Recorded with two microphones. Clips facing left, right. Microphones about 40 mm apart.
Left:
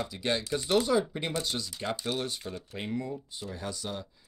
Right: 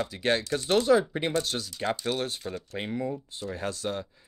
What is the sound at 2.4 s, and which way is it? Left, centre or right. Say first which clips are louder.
Speech: right 3 dB; right.